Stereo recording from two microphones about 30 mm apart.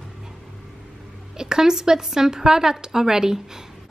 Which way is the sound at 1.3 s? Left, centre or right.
Right.